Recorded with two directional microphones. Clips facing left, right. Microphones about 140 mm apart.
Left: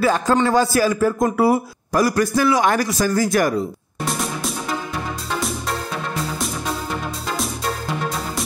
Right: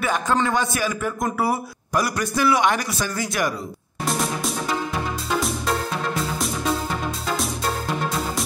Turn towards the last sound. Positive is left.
turn(degrees=0)  # may be behind; listen again after turning